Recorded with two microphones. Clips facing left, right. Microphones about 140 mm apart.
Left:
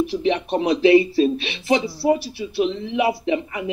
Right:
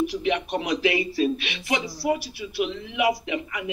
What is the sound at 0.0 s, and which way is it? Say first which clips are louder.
Speech: left 4 dB; 30° left (ahead or behind).